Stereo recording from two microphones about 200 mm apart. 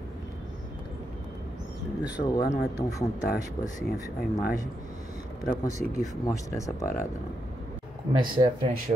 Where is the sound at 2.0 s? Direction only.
20° left (ahead or behind).